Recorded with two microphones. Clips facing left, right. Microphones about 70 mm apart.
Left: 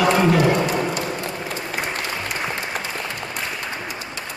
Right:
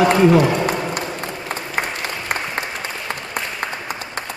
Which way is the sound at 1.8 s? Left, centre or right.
Right.